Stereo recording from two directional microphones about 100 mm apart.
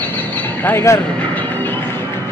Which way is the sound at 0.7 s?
20° left (ahead or behind).